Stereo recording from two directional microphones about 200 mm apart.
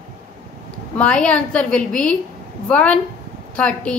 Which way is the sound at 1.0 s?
5° left (ahead or behind).